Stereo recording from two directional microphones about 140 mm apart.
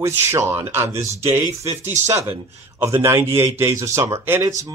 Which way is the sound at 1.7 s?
55° right (ahead or behind).